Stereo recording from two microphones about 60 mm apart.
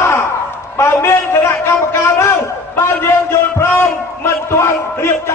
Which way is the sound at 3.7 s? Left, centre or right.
Left.